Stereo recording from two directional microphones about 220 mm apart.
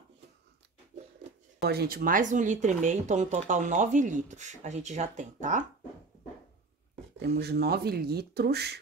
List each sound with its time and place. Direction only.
1.6 s speech: 45° right (ahead or behind)
7.2 s speech: 45° right (ahead or behind)